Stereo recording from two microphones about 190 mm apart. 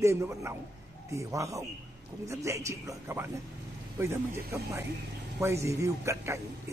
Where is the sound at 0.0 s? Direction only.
15° right (ahead or behind).